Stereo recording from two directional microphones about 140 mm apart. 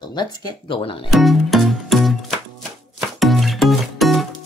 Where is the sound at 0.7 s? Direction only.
40° left (ahead or behind).